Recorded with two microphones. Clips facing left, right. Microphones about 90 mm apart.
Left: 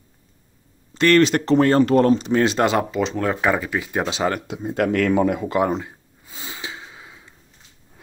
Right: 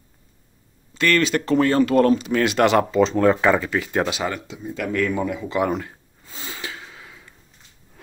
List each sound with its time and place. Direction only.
0.9 s speech: 40° left (ahead or behind); by 2.8 s 20° left (ahead or behind)
2.8 s speech: 10° left (ahead or behind)
4.3 s speech: 60° left (ahead or behind)
5.5 s speech: 30° left (ahead or behind)
5.9 s gasp: 15° left (ahead or behind)